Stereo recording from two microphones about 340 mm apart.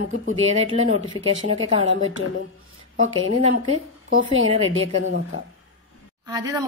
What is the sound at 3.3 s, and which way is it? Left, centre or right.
A woman's voice, left.